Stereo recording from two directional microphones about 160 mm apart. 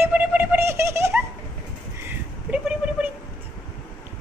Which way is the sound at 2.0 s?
5° right (ahead or behind).